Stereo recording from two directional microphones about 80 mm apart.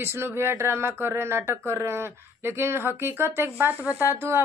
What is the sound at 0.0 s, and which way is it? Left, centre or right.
A woman's voice, right.